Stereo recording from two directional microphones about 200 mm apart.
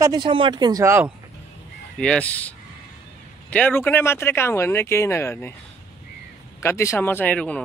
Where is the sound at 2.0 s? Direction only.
5° left (ahead or behind).